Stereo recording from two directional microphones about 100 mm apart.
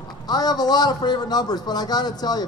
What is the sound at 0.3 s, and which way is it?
A man's voice, 40° left (ahead or behind).